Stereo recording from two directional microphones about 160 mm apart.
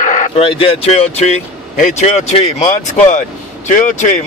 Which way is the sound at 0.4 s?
35° left (ahead or behind).